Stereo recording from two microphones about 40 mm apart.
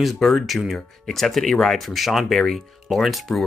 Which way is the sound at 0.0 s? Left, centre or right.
Centre.